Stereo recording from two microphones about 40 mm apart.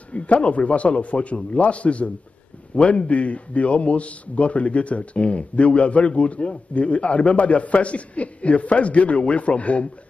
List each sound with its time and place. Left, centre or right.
0.1 s a man's voice: left